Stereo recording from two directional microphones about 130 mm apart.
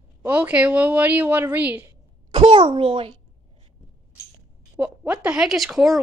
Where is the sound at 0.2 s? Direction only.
10° right (ahead or behind).